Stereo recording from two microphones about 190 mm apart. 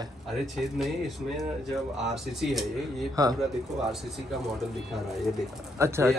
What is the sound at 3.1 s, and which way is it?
Speech, 20° right (ahead or behind).